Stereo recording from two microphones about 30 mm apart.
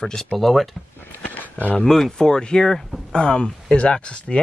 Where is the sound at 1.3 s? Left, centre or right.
Left.